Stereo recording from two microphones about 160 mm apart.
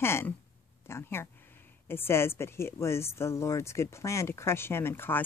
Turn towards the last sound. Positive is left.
turn(degrees=15)  # may be behind; listen again after turning